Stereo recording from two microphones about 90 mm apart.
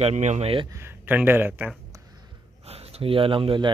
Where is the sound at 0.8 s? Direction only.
20° right (ahead or behind).